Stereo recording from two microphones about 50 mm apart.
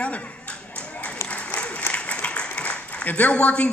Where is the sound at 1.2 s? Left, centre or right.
Left.